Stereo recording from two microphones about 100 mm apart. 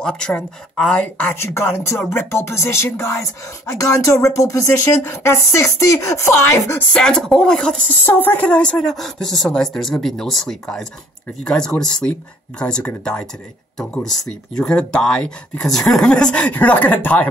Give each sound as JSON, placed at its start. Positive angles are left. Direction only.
{"t": 0.0, "sound": "speech", "side_deg": 10}
{"t": 6.9, "sound": "speech", "side_deg": 5}
{"t": 8.0, "sound": "speech", "side_deg": 20}